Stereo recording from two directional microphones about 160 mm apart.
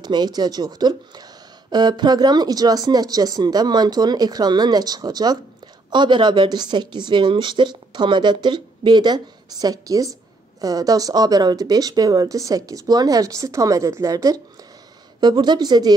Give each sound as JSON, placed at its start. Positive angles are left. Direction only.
{"t": 0.0, "sound": "speech", "side_deg": -25}